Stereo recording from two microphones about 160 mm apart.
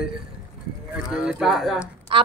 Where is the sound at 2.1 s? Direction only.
35° right (ahead or behind).